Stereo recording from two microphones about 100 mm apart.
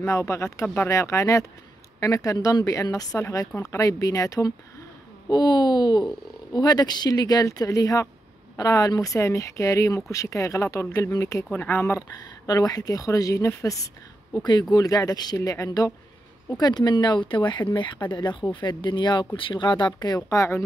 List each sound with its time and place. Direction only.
0.0 s speech: 30° left (ahead or behind)
12.2 s speech: 40° left (ahead or behind)
14.3 s speech: 45° left (ahead or behind)
20.2 s speech: 30° left (ahead or behind)